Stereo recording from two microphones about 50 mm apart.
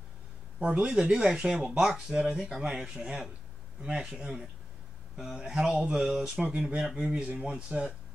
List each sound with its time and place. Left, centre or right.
0.6 s speech: right
0.8 s speech: centre
6.5 s speech: right